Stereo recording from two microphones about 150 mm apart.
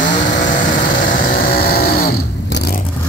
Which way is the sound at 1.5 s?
90° left.